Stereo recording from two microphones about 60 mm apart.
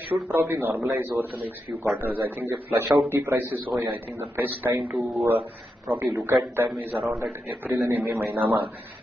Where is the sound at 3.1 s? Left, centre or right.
Right.